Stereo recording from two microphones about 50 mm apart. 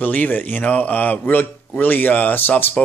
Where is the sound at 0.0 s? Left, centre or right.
Left.